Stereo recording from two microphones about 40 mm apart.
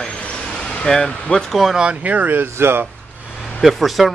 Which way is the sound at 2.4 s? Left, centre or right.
Right.